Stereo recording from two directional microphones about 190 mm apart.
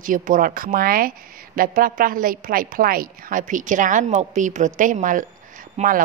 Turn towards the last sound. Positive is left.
turn(degrees=-45)  # may be behind; listen again after turning